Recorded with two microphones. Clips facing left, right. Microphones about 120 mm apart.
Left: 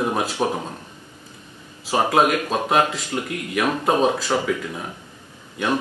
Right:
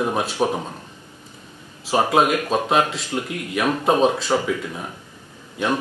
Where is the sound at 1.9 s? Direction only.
Centre (ahead or behind).